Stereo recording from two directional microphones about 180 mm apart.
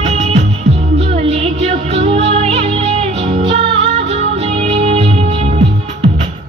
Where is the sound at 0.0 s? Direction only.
35° right (ahead or behind).